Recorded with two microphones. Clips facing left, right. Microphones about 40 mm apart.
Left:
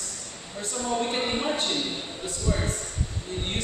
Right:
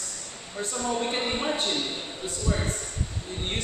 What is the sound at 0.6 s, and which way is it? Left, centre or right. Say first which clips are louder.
Speech: right 1 dB; right.